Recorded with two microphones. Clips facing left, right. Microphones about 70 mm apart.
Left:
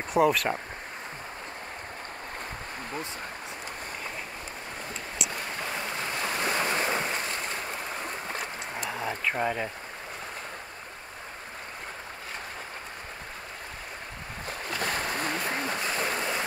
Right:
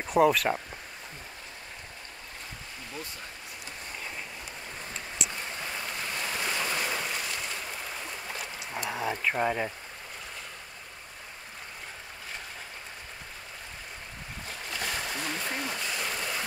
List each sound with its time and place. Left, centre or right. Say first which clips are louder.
0.1 s speech: right 1 dB; centre
5.2 s boat: left 2 dB; centre
5.6 s waves: left 4 dB; left
8.7 s a sound: right 2 dB; centre
14.5 s stream: left 4 dB; left